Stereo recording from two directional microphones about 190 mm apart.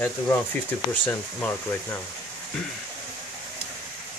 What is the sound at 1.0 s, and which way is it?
Speech, 10° left (ahead or behind).